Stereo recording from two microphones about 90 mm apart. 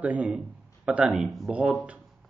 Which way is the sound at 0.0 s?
15° right (ahead or behind).